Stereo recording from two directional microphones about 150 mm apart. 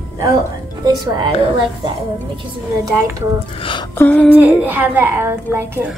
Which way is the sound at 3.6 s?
35° left (ahead or behind).